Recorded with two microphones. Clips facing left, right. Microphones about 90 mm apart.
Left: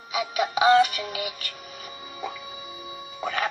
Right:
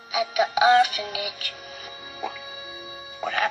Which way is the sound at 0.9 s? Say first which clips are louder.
Right 1 dB; 45° left (ahead or behind).